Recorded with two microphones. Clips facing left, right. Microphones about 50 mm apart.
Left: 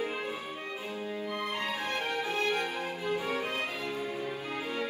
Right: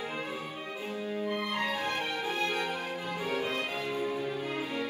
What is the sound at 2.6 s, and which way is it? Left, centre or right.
Music, right.